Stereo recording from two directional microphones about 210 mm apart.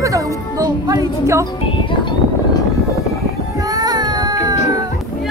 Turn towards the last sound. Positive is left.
turn(degrees=-20)  # may be behind; listen again after turning